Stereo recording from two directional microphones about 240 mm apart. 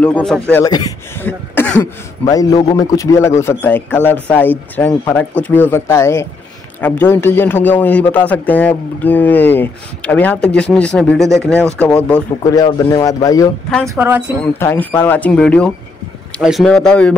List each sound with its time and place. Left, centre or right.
0.0 s speech: centre
12.5 s speech: centre
13.8 s speech: centre
14.4 s speech: centre